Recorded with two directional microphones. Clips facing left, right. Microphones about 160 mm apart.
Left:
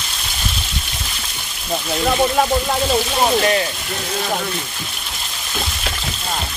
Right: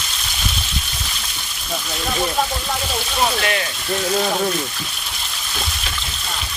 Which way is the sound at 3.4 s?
30° left (ahead or behind).